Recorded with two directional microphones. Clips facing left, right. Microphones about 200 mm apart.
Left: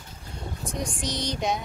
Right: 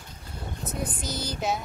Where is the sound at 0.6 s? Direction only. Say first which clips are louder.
Left 1 dB; 5° right (ahead or behind).